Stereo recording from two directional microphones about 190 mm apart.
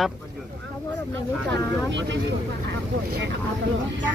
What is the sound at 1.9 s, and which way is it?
Speech, 70° right (ahead or behind).